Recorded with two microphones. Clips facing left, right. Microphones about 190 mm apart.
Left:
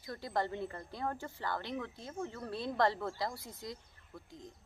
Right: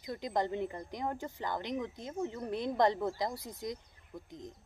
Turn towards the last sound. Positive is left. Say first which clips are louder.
# right 4 dB
turn(degrees=-20)  # may be behind; listen again after turning